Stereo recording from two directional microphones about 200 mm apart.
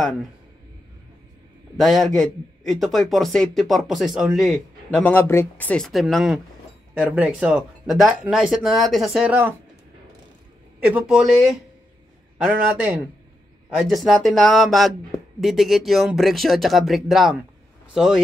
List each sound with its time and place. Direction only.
1.8 s speech: centre (ahead or behind)
10.8 s speech: 5° right (ahead or behind)
12.4 s speech: 5° right (ahead or behind)